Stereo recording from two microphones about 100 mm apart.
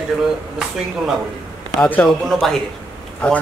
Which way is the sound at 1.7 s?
20° left (ahead or behind).